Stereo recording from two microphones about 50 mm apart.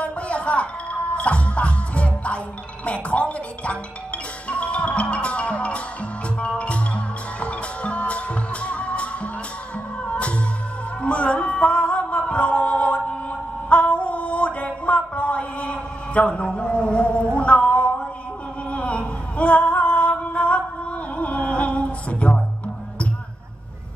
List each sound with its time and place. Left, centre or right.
0.0 s speech: left
4.5 s music: left
7.3 s music: left
13.7 s a sound: left
17.4 s singing: left
18.7 s a sound: left